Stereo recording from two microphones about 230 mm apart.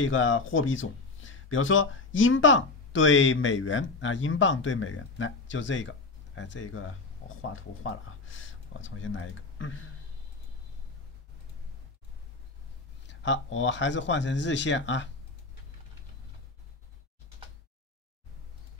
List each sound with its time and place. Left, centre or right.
0.0 s speech: left
13.0 s speech: left